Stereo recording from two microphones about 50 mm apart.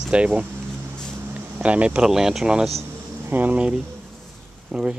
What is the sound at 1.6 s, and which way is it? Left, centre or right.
Speech, right.